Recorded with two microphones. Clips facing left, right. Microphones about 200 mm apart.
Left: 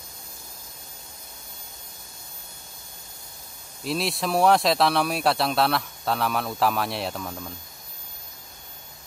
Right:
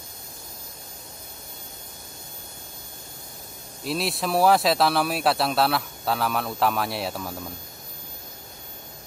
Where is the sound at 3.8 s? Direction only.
Centre (ahead or behind).